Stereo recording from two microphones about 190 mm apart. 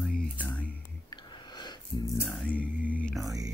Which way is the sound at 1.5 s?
20° left (ahead or behind).